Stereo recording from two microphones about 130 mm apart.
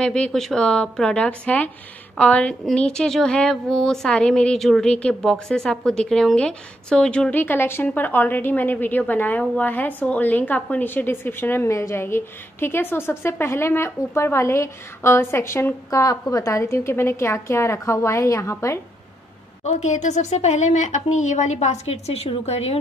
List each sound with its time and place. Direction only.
0.0 s a woman's voice: 5° left (ahead or behind); by 18.8 s 20° left (ahead or behind)
19.6 s a woman's voice: 65° left (ahead or behind)